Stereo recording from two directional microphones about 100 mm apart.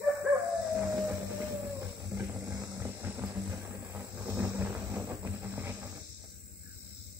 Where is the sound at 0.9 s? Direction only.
20° right (ahead or behind).